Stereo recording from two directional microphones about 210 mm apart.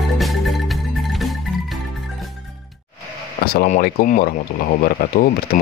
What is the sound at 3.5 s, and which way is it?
Speech, 45° left (ahead or behind).